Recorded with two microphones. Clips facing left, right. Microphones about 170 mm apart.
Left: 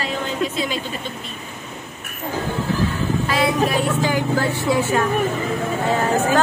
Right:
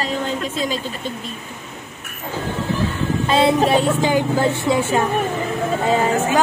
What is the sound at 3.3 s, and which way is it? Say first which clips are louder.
A woman's voice: right 6 dB; 25° right (ahead or behind).